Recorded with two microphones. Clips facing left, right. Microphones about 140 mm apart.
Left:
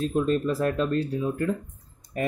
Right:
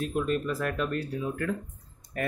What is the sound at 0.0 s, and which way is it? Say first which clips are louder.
Speech: left 4 dB; 30° left (ahead or behind).